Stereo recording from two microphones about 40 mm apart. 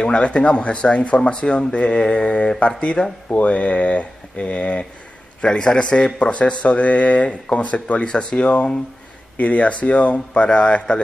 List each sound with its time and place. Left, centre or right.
0.0 s speech: left
5.4 s speech: left
9.4 s speech: left